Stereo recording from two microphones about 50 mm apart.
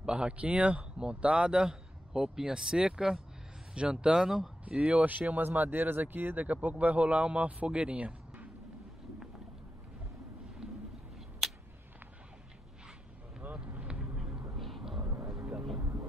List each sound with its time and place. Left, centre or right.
0.0 s speech: centre
13.4 s vehicle: right
14.1 s a sound: centre
14.6 s vehicle: centre
15.0 s vehicle: right
15.8 s a sound: right